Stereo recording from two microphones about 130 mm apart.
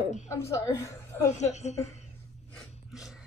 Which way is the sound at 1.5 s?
60° left (ahead or behind).